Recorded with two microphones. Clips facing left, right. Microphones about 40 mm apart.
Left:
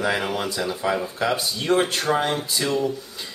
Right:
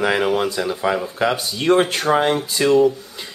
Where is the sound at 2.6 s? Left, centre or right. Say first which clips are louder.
Right 10 dB; right.